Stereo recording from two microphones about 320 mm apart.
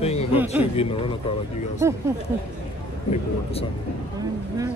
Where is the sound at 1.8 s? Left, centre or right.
Centre.